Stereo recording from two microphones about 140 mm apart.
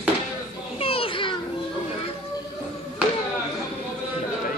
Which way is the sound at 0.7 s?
40° left (ahead or behind).